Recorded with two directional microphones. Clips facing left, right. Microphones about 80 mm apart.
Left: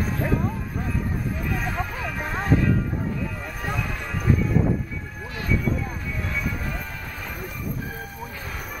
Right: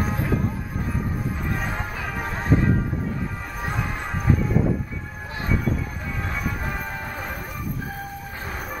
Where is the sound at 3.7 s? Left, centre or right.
Right.